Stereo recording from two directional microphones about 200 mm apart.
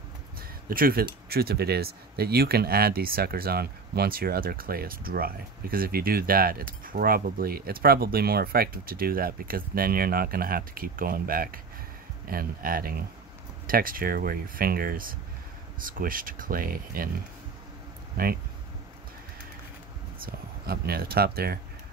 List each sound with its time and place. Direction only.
0.4 s a sound: 45° right (ahead or behind)
1.3 s speech: 50° right (ahead or behind)
18.1 s speech: 50° right (ahead or behind)
20.2 s speech: 50° right (ahead or behind)